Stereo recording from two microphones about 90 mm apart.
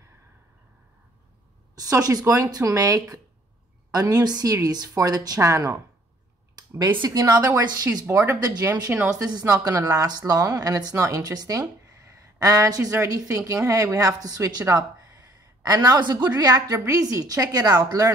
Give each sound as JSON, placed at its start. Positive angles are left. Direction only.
{"t": 1.8, "sound": "speech", "side_deg": -45}
{"t": 7.1, "sound": "speech", "side_deg": -45}
{"t": 8.1, "sound": "speech", "side_deg": -30}
{"t": 8.4, "sound": "speech", "side_deg": -45}
{"t": 8.9, "sound": "speech", "side_deg": -20}
{"t": 9.5, "sound": "speech", "side_deg": -35}
{"t": 15.6, "sound": "speech", "side_deg": -45}